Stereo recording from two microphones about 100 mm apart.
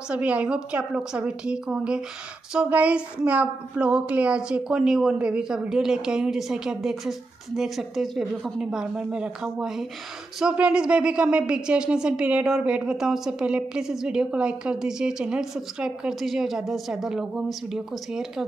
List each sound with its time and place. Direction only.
0.1 s a woman's voice: 10° right (ahead or behind)